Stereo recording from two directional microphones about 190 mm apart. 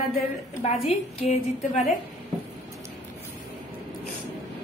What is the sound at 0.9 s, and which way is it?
Speech, 35° left (ahead or behind).